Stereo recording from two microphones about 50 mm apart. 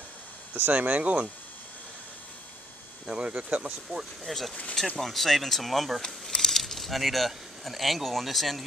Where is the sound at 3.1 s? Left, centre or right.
Centre.